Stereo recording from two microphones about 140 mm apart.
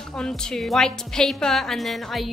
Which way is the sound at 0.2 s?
5° left (ahead or behind).